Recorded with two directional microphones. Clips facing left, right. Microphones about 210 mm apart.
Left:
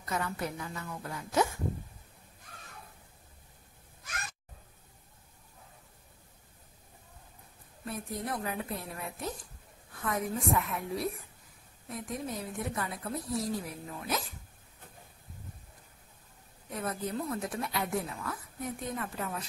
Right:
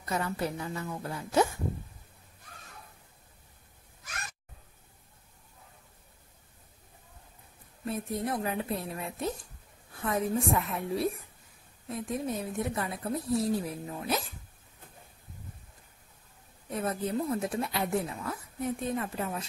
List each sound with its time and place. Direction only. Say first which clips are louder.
0.0 s a woman's voice: right 3 dB; 30° right (ahead or behind)
7.8 s a woman's voice: right 5 dB; 25° right (ahead or behind)
16.7 s a woman's voice: right 4 dB; 25° right (ahead or behind)